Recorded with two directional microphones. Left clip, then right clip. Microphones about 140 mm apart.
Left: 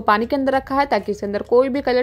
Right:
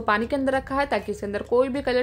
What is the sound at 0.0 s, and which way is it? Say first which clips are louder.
A woman's voice: left 5 dB; 40° left (ahead or behind).